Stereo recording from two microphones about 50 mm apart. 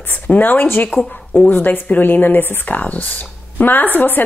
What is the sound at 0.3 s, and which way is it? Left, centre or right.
Speech, left.